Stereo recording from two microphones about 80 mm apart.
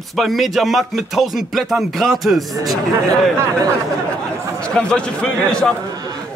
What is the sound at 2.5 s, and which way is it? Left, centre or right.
Speech, right.